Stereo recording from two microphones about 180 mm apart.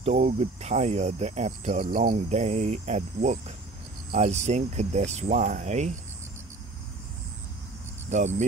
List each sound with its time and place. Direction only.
0.2 s speech: 40° right (ahead or behind)
8.1 s speech: 40° right (ahead or behind)